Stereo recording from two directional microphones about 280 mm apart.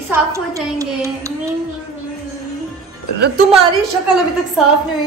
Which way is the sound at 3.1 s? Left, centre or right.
Right.